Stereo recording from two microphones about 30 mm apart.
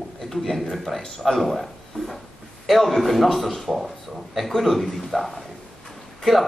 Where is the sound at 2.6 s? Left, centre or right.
Centre.